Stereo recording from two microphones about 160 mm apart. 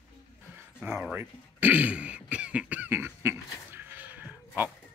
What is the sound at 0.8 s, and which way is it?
Speech, 10° right (ahead or behind).